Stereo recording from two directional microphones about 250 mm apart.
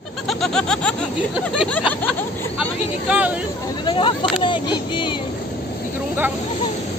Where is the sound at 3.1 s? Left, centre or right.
Centre.